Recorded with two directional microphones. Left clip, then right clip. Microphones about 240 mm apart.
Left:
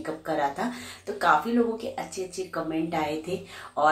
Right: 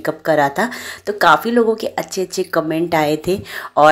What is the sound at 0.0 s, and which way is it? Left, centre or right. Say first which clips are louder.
A woman's voice: right 12 dB; right.